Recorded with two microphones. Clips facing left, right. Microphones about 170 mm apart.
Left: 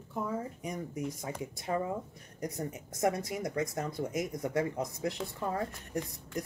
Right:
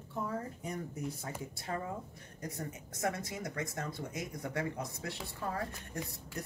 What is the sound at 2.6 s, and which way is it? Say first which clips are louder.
Speech: left 6 dB; 25° left (ahead or behind).